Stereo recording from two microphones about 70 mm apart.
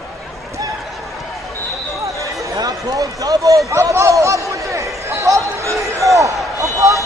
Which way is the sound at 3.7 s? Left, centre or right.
Right.